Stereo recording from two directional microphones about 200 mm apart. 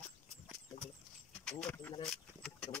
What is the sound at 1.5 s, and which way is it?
Keys jangling, 5° left (ahead or behind).